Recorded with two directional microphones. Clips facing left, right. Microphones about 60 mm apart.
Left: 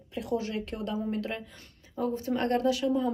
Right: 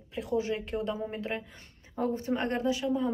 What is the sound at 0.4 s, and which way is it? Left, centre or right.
Speech, right.